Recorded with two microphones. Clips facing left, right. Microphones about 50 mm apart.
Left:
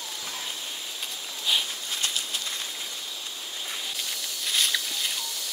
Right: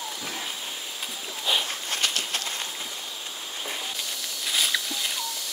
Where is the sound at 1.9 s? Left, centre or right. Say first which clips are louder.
Right 4 dB; right.